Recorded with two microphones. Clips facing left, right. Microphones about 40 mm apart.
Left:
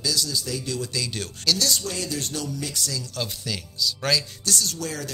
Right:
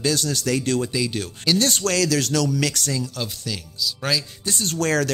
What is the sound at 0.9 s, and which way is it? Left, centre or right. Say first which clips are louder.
Speech: right 5 dB; centre.